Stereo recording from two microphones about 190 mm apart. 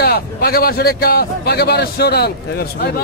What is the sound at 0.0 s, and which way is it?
A man's voice, 55° left (ahead or behind).